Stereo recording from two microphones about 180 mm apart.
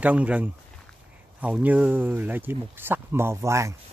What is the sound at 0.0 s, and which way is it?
Speech, 10° right (ahead or behind).